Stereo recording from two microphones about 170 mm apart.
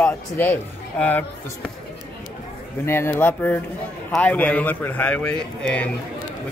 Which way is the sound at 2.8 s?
15° left (ahead or behind).